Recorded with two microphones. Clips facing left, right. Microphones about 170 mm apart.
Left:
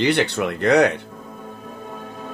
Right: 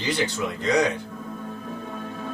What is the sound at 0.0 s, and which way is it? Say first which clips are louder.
Speech: left 6 dB; 65° left (ahead or behind).